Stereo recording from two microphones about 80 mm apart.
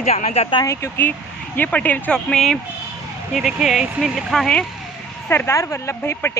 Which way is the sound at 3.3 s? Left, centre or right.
Centre.